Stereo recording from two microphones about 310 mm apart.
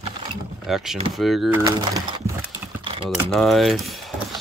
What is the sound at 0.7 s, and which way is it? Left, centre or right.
Speech, centre.